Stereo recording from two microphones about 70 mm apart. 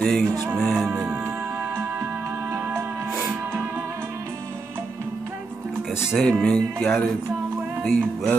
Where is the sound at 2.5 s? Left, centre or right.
Right.